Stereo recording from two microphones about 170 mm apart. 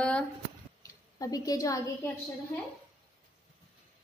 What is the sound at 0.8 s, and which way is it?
A woman's voice, 20° left (ahead or behind).